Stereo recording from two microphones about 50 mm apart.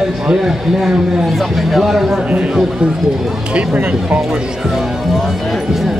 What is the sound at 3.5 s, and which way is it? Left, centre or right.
Speech, right.